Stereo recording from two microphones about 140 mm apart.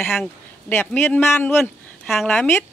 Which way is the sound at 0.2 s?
10° left (ahead or behind).